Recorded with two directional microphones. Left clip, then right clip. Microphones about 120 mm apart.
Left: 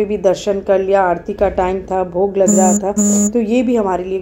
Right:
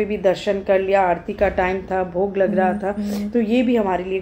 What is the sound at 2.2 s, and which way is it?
A woman's voice, 25° left (ahead or behind).